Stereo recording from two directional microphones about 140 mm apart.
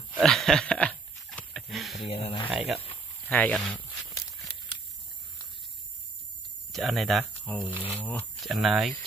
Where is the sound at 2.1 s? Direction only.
45° left (ahead or behind).